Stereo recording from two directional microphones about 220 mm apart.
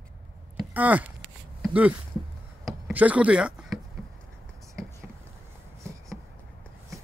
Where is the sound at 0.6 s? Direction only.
5° right (ahead or behind).